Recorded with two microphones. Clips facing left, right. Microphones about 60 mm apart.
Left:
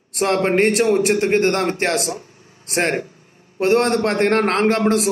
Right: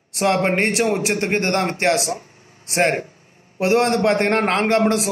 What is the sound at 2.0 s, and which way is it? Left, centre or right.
Speech, right.